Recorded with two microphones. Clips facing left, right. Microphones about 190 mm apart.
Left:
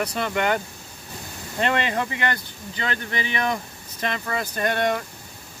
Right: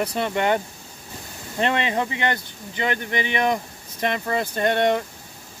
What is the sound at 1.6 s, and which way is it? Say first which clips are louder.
Speech: right 1 dB; 20° right (ahead or behind).